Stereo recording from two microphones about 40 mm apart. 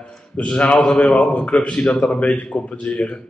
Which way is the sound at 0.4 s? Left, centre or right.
Left.